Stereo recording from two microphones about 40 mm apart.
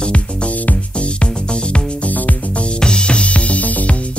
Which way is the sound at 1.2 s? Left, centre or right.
Left.